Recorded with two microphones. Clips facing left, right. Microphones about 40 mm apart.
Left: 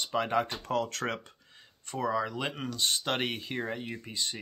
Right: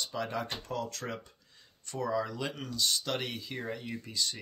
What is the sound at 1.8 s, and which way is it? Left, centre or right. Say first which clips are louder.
Speech: left 2 dB; left.